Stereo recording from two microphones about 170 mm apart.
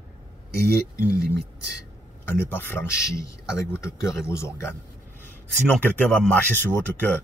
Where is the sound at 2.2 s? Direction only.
10° left (ahead or behind).